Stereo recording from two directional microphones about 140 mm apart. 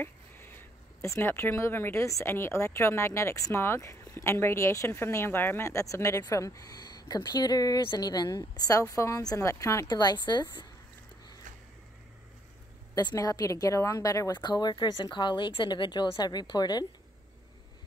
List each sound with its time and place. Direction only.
0.0 s speech: 15° left (ahead or behind); by 10.7 s 30° left (ahead or behind)
12.9 s a woman's voice: 25° left (ahead or behind)